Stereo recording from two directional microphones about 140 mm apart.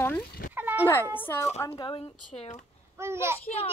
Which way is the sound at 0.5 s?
15° right (ahead or behind).